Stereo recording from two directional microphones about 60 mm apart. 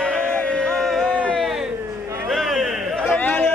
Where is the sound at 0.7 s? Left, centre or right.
Centre.